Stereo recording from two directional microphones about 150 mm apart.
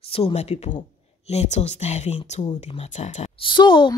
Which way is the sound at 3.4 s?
30° left (ahead or behind).